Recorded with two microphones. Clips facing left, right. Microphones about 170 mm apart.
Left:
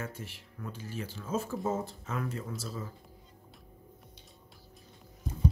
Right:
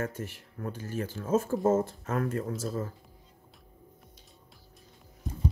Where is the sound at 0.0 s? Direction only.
50° right (ahead or behind).